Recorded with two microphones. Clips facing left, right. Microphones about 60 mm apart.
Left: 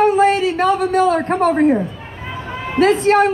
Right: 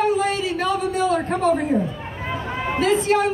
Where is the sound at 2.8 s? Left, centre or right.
Left.